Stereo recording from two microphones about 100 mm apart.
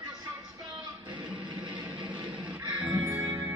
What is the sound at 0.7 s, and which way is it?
Music, 55° right (ahead or behind).